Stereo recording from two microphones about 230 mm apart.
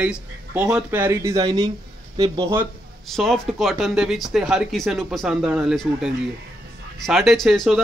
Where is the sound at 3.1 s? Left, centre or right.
Centre.